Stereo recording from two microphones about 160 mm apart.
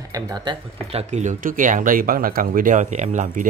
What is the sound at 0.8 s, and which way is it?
Speech, 45° right (ahead or behind).